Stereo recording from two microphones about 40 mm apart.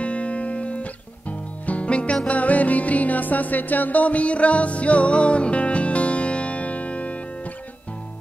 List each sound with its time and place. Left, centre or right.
0.0 s music: left